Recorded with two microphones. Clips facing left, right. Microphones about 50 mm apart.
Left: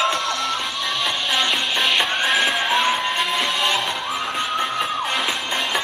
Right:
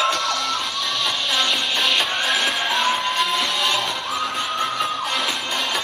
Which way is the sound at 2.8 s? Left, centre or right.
Centre.